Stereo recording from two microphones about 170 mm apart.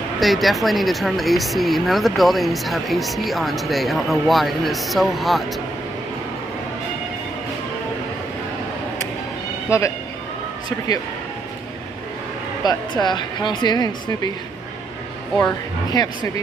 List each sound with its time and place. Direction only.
0.2 s speech: centre (ahead or behind)
9.7 s a man's voice: 15° left (ahead or behind)
12.6 s speech: 25° left (ahead or behind)
16.0 s speech: 25° left (ahead or behind)